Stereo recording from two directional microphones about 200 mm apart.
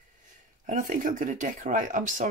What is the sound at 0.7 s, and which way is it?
Speech, 40° right (ahead or behind).